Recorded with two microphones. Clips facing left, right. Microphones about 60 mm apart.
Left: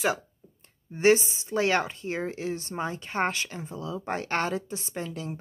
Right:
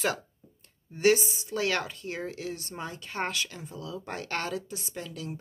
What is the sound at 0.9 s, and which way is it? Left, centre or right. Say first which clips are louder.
Speech: left 2 dB; left.